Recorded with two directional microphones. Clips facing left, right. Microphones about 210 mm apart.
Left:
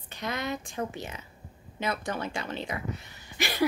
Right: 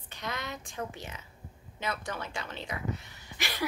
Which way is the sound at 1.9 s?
30° left (ahead or behind).